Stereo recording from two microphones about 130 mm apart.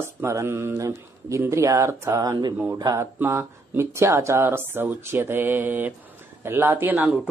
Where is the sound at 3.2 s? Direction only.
20° right (ahead or behind).